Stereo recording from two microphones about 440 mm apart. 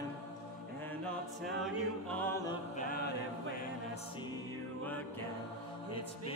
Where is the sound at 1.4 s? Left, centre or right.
Centre.